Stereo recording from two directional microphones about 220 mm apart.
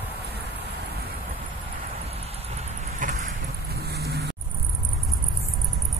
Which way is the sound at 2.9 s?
35° right (ahead or behind).